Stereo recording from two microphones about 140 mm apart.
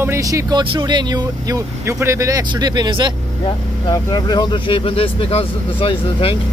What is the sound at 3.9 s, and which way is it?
Speech, 30° left (ahead or behind).